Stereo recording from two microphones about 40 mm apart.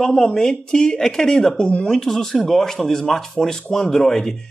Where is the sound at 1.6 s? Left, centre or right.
Left.